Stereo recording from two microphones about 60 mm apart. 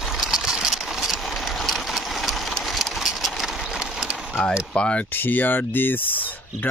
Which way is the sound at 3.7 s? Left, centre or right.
Centre.